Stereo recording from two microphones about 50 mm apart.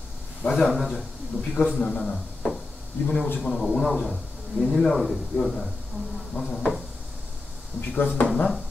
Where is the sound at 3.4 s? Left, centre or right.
Centre.